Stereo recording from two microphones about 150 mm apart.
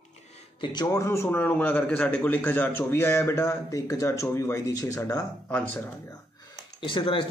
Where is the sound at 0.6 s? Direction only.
25° left (ahead or behind).